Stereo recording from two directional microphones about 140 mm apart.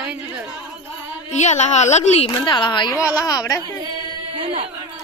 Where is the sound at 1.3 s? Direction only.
55° left (ahead or behind).